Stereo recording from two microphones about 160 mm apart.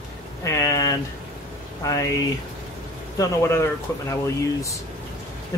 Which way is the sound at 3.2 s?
15° left (ahead or behind).